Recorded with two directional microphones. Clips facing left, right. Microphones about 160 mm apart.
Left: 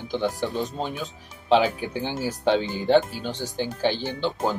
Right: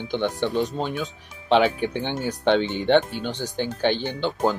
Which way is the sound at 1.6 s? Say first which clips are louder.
Right 4 dB; 65° right (ahead or behind).